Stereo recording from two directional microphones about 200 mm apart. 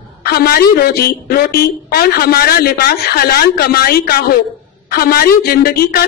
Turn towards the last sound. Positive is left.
turn(degrees=50)  # may be behind; listen again after turning